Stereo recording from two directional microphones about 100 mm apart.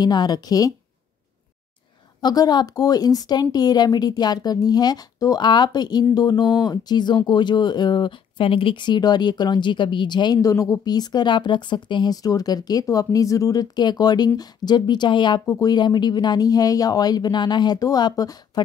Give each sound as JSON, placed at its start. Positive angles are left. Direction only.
{"t": 0.0, "sound": "speech", "side_deg": 45}
{"t": 2.2, "sound": "speech", "side_deg": 40}
{"t": 10.4, "sound": "speech", "side_deg": 35}